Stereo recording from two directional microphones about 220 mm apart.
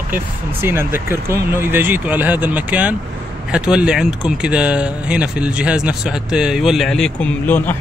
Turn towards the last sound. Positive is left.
turn(degrees=10)  # may be behind; listen again after turning